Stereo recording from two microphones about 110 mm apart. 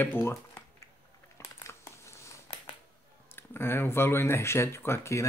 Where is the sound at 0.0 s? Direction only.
20° left (ahead or behind).